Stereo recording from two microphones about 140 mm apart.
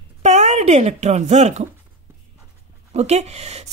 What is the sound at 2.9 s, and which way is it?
Speech, 50° right (ahead or behind).